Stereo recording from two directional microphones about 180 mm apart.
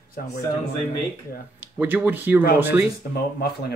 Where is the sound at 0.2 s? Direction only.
55° left (ahead or behind).